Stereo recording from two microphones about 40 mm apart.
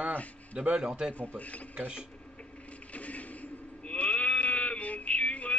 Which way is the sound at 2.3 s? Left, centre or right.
Left.